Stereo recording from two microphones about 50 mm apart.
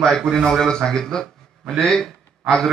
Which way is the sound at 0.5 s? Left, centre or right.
Centre.